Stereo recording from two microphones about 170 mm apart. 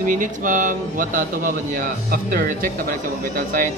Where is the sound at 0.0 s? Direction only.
50° right (ahead or behind).